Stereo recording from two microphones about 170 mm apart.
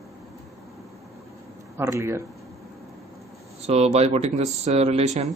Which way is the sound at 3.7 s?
40° right (ahead or behind).